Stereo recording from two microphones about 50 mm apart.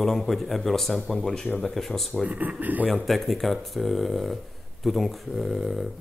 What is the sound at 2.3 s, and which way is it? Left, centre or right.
Speech, right.